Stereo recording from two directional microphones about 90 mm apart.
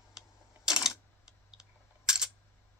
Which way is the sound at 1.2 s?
5° right (ahead or behind).